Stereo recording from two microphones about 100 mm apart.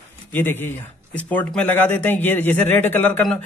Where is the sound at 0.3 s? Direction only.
20° left (ahead or behind).